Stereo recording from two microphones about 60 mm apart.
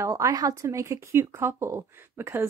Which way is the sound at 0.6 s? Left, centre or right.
Right.